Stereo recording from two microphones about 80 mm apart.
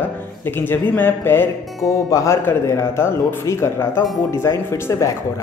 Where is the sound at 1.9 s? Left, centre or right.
Left.